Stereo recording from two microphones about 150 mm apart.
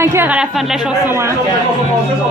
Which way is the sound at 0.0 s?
15° right (ahead or behind).